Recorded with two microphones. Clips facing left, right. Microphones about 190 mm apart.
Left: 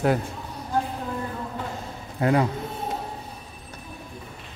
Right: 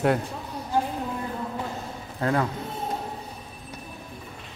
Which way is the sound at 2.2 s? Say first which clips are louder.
Left 3 dB; 15° left (ahead or behind).